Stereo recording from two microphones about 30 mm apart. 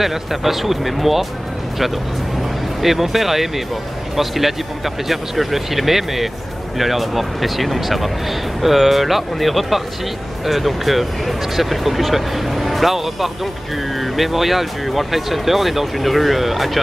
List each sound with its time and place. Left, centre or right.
0.0 s speech: centre
2.8 s speech: centre